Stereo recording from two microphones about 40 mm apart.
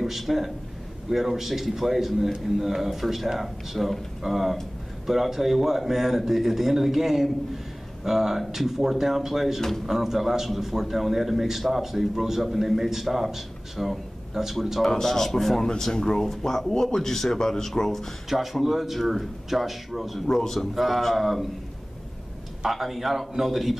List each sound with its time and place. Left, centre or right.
0.0 s a man's voice: centre
14.9 s speech: centre
15.8 s speech: centre
18.3 s a man's voice: centre
20.2 s speech: centre
20.7 s a man's voice: centre
22.7 s a man's voice: centre